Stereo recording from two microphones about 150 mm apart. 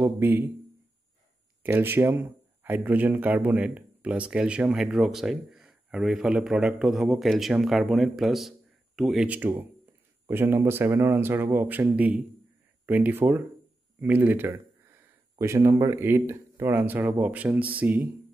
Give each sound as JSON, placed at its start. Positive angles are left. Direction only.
{"t": 0.0, "sound": "speech", "side_deg": -15}
{"t": 1.6, "sound": "speech", "side_deg": -15}